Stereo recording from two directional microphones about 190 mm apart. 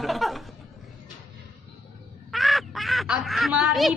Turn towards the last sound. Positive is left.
turn(degrees=-5)  # may be behind; listen again after turning